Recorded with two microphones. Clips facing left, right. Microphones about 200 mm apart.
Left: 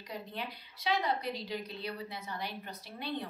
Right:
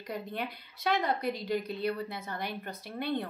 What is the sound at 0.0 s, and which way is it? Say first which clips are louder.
A woman's voice: right 5 dB; 50° right (ahead or behind).